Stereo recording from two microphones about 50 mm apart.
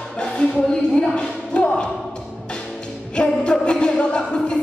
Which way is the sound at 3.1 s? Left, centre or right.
Left.